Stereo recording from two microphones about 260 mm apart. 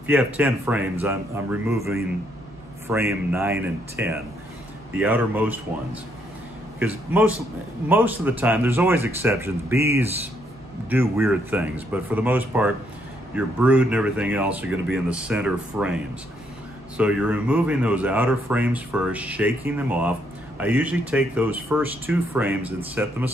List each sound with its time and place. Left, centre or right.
0.0 s speech: centre
6.8 s speech: centre